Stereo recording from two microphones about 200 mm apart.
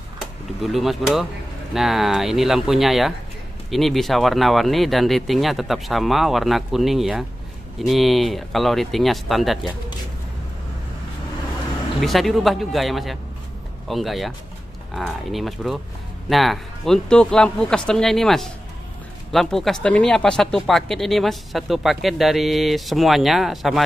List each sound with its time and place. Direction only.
0.2 s speech: centre (ahead or behind)
12.0 s speech: centre (ahead or behind)